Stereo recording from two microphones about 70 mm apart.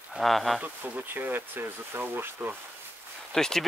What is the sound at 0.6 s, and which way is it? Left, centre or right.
Speech, right.